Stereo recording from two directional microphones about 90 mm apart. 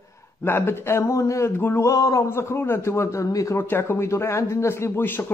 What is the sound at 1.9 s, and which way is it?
Speech, 40° left (ahead or behind).